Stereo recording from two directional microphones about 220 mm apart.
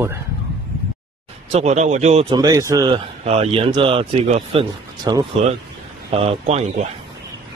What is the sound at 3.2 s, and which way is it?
A man's voice, 25° right (ahead or behind).